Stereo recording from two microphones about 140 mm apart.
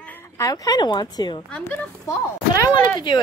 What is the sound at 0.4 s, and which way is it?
Speech, 25° left (ahead or behind).